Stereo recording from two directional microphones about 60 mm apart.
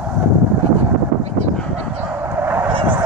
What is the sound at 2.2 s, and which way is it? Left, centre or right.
Vehicle, right.